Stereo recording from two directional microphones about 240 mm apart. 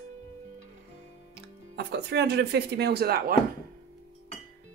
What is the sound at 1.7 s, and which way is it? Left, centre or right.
A woman's voice, right.